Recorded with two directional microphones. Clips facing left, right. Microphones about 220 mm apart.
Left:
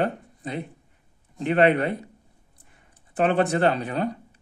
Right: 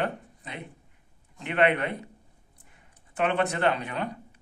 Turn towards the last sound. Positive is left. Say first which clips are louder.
# left 6 dB
turn(degrees=35)  # may be behind; listen again after turning